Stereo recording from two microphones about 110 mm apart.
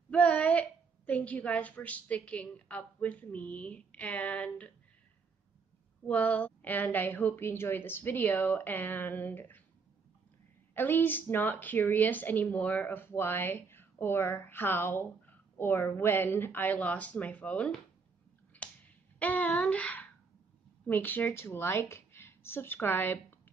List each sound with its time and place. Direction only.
0.1 s a woman's voice: 10° left (ahead or behind)
6.0 s a woman's voice: 15° left (ahead or behind)
10.7 s a woman's voice: 20° left (ahead or behind)
19.1 s a woman's voice: 15° left (ahead or behind)